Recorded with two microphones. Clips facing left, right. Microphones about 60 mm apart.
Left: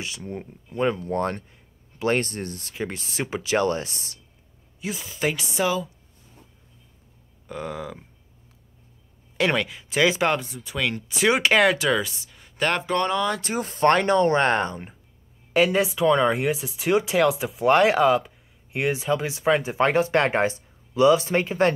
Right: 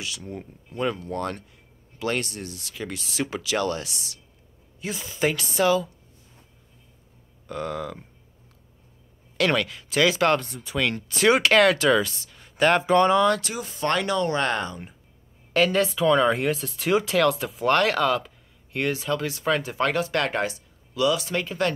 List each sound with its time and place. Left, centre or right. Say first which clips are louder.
0.0 s speech: left 2 dB; left
4.8 s speech: right 1 dB; centre
5.3 s speech: right 4 dB; centre
7.4 s speech: right 2 dB; centre
9.4 s speech: even; centre
10.3 s speech: right 2 dB; centre
13.6 s speech: left 6 dB; left
15.5 s speech: left 1 dB; centre; by 21.7 s left